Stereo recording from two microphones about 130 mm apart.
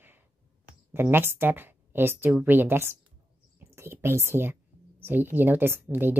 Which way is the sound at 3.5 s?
20° right (ahead or behind).